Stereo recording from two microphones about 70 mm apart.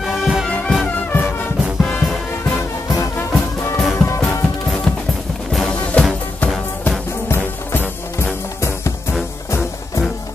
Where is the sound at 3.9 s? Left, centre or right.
Left.